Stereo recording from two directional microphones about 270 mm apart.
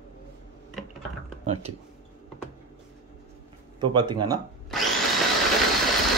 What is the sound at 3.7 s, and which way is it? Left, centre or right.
Speech, centre.